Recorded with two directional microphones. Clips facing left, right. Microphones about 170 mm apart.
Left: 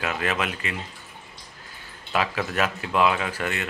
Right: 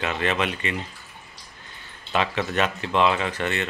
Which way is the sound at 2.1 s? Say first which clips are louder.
Right 1 dB; 5° left (ahead or behind).